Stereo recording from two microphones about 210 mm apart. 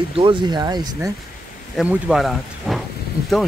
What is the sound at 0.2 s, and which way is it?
Speech, 20° right (ahead or behind).